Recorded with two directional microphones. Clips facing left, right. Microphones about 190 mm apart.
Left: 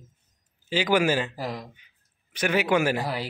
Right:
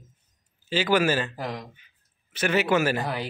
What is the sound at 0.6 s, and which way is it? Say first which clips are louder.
A man's voice: even; 15° left (ahead or behind).